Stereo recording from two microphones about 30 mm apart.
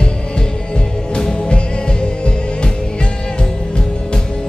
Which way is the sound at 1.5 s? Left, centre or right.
Left.